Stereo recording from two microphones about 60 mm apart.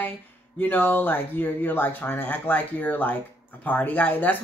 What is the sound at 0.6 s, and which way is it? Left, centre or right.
Speech, left.